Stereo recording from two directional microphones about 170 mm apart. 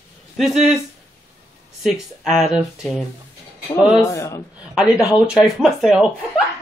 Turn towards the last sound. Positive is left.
turn(degrees=-5)  # may be behind; listen again after turning